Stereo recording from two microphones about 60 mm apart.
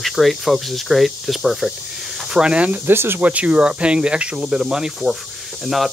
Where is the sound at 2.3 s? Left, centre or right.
Centre.